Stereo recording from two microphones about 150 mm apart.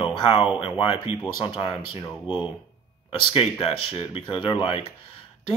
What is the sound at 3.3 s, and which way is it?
Speech, 40° left (ahead or behind).